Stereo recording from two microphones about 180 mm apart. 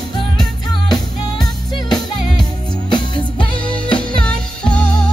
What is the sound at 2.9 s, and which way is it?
Music, 25° left (ahead or behind).